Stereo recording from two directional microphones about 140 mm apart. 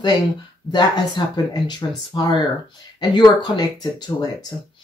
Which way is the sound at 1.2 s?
35° left (ahead or behind).